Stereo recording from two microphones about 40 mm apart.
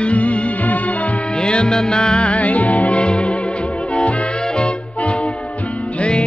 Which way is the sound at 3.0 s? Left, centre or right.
Left.